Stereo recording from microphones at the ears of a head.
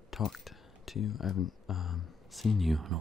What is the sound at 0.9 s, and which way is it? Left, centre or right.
Speech, left.